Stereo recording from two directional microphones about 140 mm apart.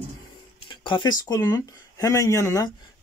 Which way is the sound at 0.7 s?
35° left (ahead or behind).